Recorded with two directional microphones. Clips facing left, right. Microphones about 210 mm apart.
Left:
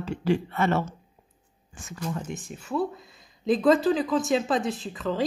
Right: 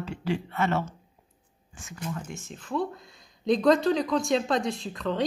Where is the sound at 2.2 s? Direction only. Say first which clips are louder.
Left 4 dB; 20° left (ahead or behind); by 5.2 s 5° left (ahead or behind).